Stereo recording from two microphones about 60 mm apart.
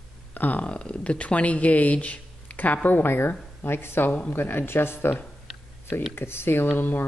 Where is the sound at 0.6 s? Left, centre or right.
Centre; by 5.1 s left.